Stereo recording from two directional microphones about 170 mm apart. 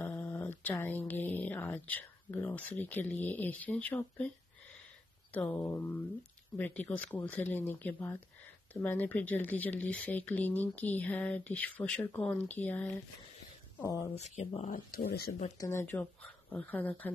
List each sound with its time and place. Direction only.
0.0 s speech: 10° left (ahead or behind)
5.3 s speech: 10° left (ahead or behind)
14.1 s speech: 40° left (ahead or behind)
14.7 s speech: 60° left (ahead or behind)
15.5 s speech: 15° left (ahead or behind)